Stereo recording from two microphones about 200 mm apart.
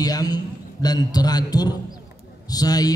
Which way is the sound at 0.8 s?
20° left (ahead or behind).